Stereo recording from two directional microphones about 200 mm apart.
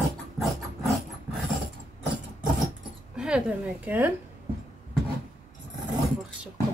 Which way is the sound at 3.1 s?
5° right (ahead or behind).